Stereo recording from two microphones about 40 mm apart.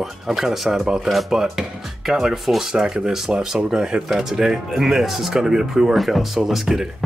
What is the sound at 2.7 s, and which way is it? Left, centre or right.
Speech, centre.